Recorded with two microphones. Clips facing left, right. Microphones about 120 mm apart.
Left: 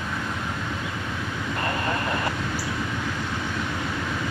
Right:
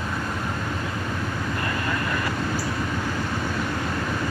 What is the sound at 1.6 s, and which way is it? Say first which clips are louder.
Vehicle: left 3 dB; 25° left (ahead or behind).